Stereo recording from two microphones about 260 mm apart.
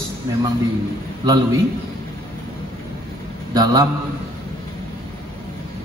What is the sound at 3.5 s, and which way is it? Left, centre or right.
Speech, centre.